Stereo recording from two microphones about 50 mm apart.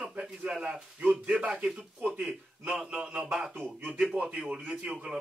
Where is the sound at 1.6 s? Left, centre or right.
Centre.